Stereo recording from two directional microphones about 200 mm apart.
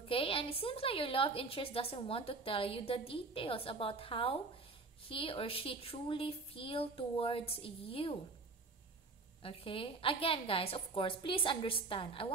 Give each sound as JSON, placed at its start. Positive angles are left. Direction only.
{"t": 0.1, "sound": "a woman's voice", "side_deg": 25}
{"t": 9.4, "sound": "a woman's voice", "side_deg": 25}